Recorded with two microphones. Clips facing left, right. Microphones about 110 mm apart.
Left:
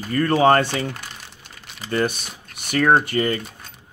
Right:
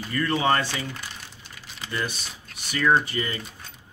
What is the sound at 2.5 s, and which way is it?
Speech, 55° left (ahead or behind).